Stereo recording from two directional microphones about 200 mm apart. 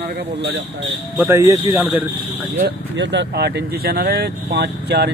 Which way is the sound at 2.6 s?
60° right (ahead or behind).